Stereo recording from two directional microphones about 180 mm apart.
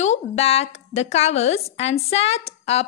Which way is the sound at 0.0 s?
35° left (ahead or behind).